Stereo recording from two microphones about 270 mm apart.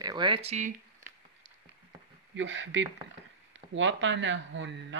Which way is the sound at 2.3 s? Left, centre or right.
Right.